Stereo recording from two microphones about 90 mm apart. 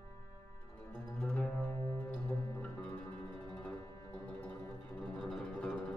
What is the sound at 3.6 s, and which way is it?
Music, 20° left (ahead or behind).